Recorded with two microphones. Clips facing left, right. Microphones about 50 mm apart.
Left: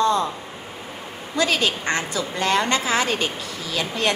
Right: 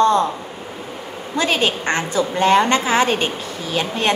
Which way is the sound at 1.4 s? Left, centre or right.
Right.